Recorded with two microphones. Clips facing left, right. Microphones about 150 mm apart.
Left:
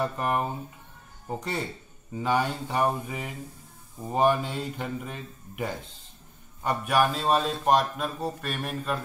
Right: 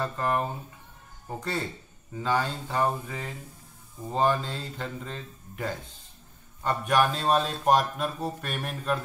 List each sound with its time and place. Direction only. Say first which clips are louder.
0.0 s speech: left 1 dB; 15° left (ahead or behind); by 9.0 s centre (ahead or behind)